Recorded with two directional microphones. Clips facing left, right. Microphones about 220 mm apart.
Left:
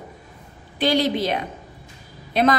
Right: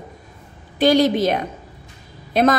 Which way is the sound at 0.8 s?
45° right (ahead or behind).